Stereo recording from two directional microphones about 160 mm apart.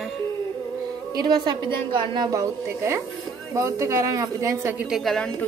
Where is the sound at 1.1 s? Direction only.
25° right (ahead or behind).